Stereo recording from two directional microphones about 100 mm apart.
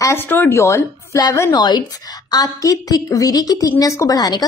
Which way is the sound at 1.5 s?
45° left (ahead or behind).